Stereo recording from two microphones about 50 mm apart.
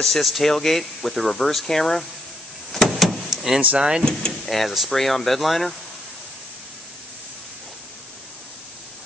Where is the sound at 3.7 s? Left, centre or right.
Centre.